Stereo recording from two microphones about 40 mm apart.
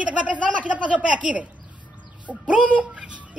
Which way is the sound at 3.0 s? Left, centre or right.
Right.